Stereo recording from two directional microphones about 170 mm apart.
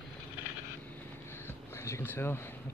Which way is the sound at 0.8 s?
10° left (ahead or behind).